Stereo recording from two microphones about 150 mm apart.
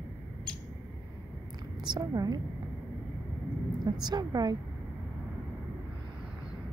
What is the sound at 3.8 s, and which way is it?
Speech, 30° right (ahead or behind).